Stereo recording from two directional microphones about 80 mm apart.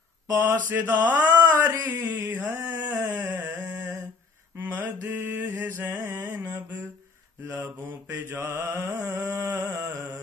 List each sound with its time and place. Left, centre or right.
0.4 s mantra: right
1.9 s a sound: right
4.6 s mantra: right
7.4 s mantra: right